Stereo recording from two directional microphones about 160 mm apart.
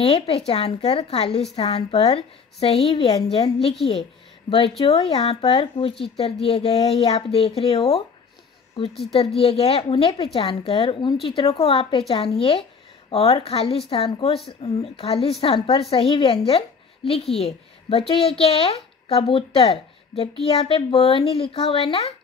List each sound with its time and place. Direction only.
0.0 s a woman's voice: 40° left (ahead or behind)
9.0 s a woman's voice: 35° left (ahead or behind)